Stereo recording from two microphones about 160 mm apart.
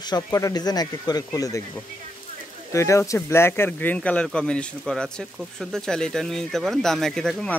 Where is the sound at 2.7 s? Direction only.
20° left (ahead or behind).